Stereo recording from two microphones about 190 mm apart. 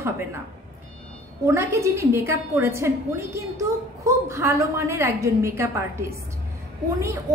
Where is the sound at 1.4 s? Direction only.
15° right (ahead or behind).